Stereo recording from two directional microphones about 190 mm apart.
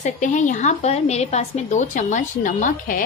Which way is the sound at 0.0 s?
40° left (ahead or behind).